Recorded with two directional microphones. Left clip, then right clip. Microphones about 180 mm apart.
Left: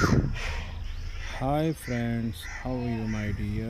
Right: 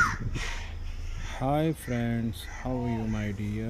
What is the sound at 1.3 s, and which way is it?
Speech, centre (ahead or behind).